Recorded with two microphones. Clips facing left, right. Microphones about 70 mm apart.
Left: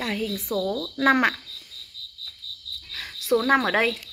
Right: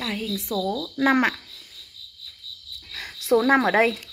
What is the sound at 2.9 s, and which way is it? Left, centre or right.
Cricket, right.